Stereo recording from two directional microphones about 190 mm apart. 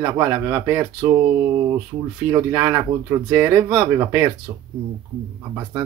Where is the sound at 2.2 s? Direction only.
15° right (ahead or behind).